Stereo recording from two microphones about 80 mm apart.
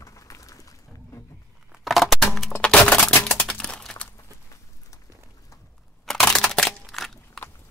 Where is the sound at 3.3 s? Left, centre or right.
Centre.